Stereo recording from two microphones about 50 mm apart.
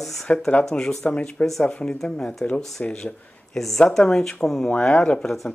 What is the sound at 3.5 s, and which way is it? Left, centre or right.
Speech, centre.